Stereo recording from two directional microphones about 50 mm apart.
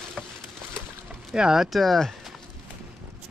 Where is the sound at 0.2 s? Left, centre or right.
Centre.